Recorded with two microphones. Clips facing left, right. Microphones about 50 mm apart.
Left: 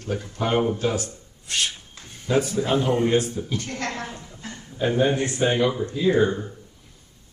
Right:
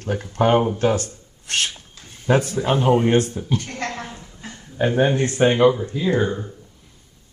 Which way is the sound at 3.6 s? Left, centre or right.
Centre.